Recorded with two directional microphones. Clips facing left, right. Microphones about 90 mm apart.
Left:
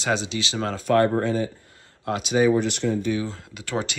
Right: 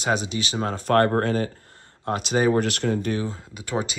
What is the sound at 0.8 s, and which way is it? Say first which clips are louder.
Speech: even; 50° right (ahead or behind).